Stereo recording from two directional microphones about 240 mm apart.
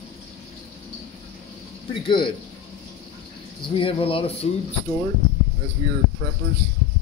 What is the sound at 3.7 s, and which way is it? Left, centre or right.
Speech, left.